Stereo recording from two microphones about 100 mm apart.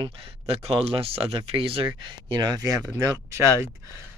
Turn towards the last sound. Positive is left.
turn(degrees=-30)  # may be behind; listen again after turning